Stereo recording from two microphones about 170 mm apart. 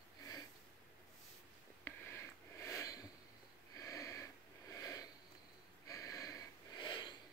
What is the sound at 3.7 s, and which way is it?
Sniff, 20° left (ahead or behind).